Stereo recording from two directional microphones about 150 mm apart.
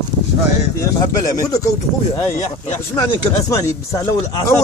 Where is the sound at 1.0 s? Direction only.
25° left (ahead or behind).